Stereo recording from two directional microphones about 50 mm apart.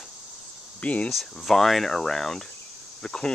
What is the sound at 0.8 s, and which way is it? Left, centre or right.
Speech, left.